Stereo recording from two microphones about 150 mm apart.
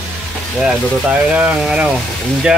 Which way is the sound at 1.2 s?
5° right (ahead or behind).